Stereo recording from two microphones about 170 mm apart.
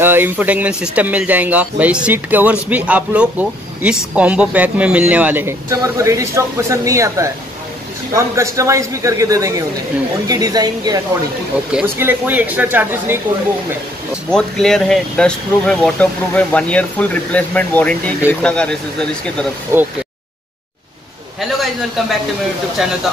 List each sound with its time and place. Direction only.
0.0 s a man's voice: 10° right (ahead or behind)
11.7 s speech: 10° right (ahead or behind)
14.3 s speech: 5° left (ahead or behind)
19.7 s speech: 15° right (ahead or behind)
21.5 s a man's voice: centre (ahead or behind)